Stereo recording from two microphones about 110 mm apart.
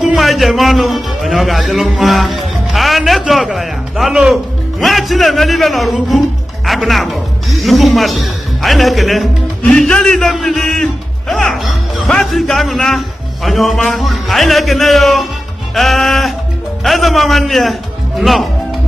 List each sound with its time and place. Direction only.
0.0 s a man's voice: centre (ahead or behind)